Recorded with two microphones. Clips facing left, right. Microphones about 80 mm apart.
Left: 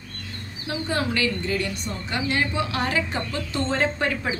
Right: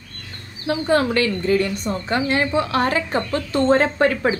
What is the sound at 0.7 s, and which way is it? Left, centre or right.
A woman's voice, right.